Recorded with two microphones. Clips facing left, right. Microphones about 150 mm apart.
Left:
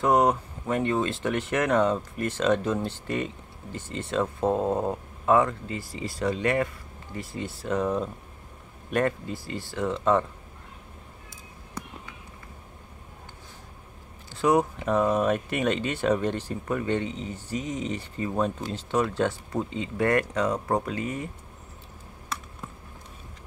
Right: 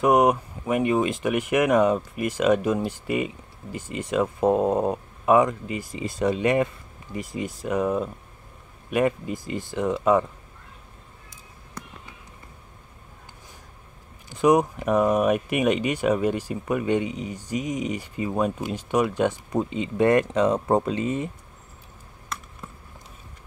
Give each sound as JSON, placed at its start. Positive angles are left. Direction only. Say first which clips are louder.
{"t": 0.0, "sound": "speech", "louder": "right 3 dB", "side_deg": -15}
{"t": 14.3, "sound": "speech", "louder": "right 3 dB", "side_deg": -15}
{"t": 22.6, "sound": "a sound", "louder": "left 1 dB", "side_deg": 0}